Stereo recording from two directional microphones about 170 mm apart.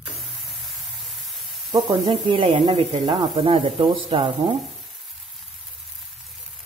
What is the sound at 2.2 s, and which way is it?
Speech, 25° right (ahead or behind).